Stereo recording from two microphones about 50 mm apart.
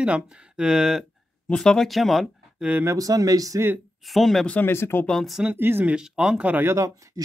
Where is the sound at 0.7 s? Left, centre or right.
Centre.